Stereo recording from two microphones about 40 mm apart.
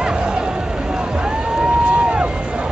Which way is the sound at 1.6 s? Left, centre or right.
Right.